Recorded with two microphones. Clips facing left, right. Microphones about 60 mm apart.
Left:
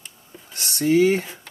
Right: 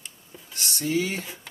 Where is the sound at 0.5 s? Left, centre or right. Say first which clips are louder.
Left 1 dB; left.